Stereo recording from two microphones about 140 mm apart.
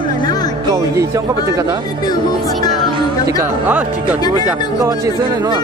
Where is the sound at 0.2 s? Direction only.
30° left (ahead or behind).